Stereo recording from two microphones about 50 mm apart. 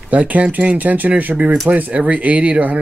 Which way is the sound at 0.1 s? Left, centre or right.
Right.